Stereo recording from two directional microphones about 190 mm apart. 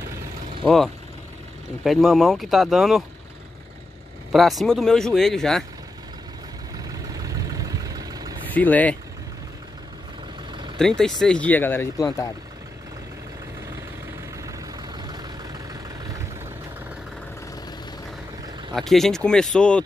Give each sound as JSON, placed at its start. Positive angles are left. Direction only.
{"t": 0.7, "sound": "speech", "side_deg": 0}
{"t": 4.3, "sound": "speech", "side_deg": 0}
{"t": 6.8, "sound": "vehicle", "side_deg": -20}
{"t": 8.5, "sound": "speech", "side_deg": 10}
{"t": 10.8, "sound": "speech", "side_deg": 5}
{"t": 15.0, "sound": "vehicle", "side_deg": -20}
{"t": 18.8, "sound": "speech", "side_deg": 0}